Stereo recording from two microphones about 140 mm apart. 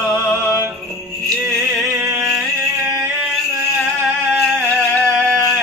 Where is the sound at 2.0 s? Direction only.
20° right (ahead or behind).